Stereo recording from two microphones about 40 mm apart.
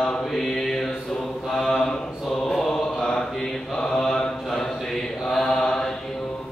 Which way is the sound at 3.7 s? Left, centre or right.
Centre.